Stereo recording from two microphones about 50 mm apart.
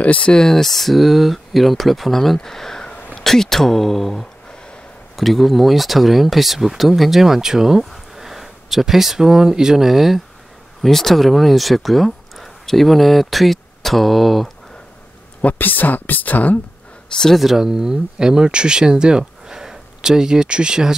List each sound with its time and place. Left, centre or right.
0.0 s speech: left; by 14.5 s centre
15.4 s speech: left
17.4 s speech: centre